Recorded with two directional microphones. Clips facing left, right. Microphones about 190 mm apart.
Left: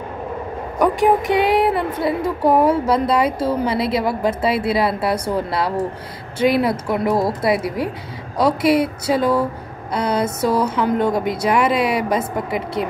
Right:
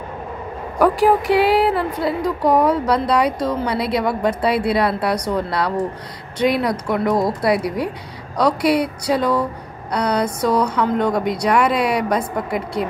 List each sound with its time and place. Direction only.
0.7 s a woman's voice: centre (ahead or behind)
2.2 s speech: 25° left (ahead or behind)
2.7 s a woman's voice: 5° left (ahead or behind)
5.1 s speech: 25° left (ahead or behind)
6.3 s a woman's voice: 5° left (ahead or behind)